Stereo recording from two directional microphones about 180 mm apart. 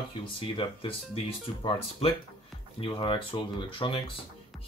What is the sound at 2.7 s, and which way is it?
Speech, 30° left (ahead or behind).